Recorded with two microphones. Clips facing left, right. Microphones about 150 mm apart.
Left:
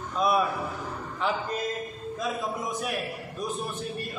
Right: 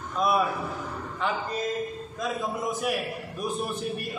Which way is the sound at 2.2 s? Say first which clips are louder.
Right 2 dB; centre (ahead or behind).